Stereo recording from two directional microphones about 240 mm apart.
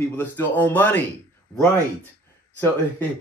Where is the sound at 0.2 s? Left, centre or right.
Centre.